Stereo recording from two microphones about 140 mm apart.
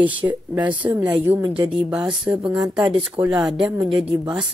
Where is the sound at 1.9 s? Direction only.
5° right (ahead or behind).